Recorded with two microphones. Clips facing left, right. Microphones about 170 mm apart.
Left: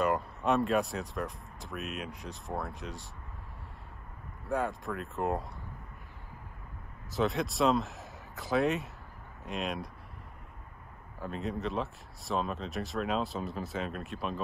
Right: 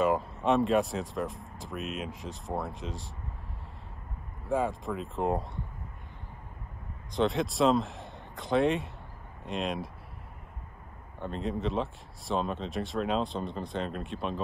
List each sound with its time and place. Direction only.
0.0 s speech: centre (ahead or behind)
4.5 s speech: centre (ahead or behind)
7.1 s speech: centre (ahead or behind)
11.1 s speech: 5° left (ahead or behind)